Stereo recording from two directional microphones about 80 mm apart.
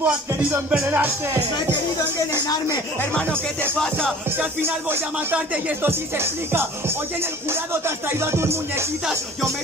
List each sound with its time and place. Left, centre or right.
0.0 s music: centre
5.9 s music: right
7.7 s music: right